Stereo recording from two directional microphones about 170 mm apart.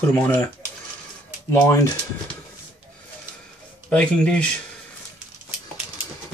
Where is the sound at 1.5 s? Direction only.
15° left (ahead or behind).